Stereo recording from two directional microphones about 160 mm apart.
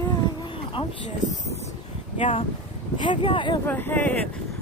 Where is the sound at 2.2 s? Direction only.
35° left (ahead or behind).